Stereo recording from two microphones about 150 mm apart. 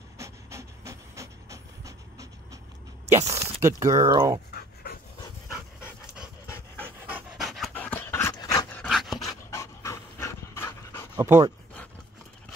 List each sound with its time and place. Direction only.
0.2 s pant: 20° right (ahead or behind)
3.2 s speech: 20° right (ahead or behind)
6.4 s dog: 15° left (ahead or behind)
7.1 s pant: 5° right (ahead or behind)
7.7 s dog: 10° left (ahead or behind)
8.8 s dog: centre (ahead or behind)
9.2 s pant: 20° left (ahead or behind)
11.1 s speech: 20° right (ahead or behind)